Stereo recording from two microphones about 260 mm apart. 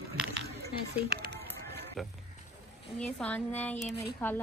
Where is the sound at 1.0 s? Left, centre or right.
Right.